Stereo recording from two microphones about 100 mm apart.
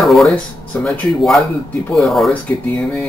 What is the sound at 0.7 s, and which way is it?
Speech, 15° left (ahead or behind).